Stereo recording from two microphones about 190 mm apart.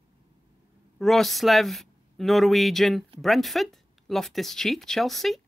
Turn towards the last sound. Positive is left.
turn(degrees=0)  # may be behind; listen again after turning